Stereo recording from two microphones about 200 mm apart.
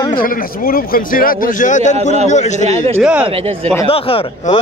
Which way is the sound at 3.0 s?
5° right (ahead or behind).